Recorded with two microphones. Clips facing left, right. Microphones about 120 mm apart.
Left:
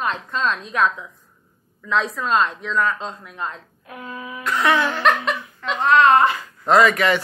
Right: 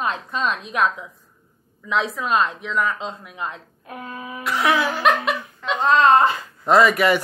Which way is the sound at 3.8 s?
35° right (ahead or behind).